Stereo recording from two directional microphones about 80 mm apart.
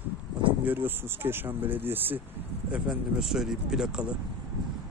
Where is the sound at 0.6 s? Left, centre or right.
Right.